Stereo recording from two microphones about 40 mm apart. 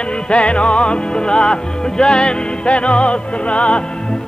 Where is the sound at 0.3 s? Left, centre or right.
Left.